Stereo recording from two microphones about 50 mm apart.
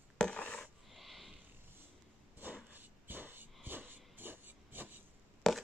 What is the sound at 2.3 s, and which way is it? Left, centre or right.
Dog, right.